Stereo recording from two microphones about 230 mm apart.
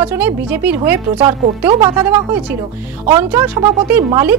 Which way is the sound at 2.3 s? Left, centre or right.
Centre.